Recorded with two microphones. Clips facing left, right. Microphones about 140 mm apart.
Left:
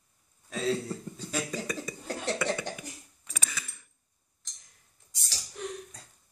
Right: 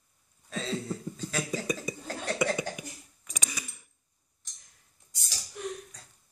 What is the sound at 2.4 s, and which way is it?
Cough, 10° right (ahead or behind).